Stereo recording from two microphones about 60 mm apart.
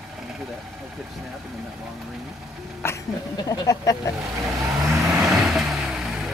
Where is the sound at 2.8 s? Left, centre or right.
Left.